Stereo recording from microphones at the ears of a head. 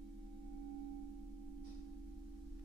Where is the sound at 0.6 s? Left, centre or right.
Right.